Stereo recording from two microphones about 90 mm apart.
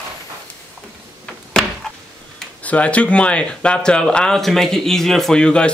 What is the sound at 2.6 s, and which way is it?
Speech, 15° left (ahead or behind).